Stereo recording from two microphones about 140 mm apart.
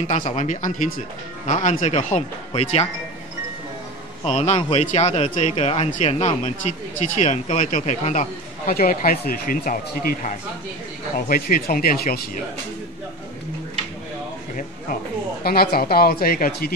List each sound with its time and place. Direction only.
0.1 s speech: 55° left (ahead or behind)
1.4 s speech: 55° left (ahead or behind)
4.2 s speech: 45° left (ahead or behind)
8.6 s speech: 90° left
15.4 s speech: 90° left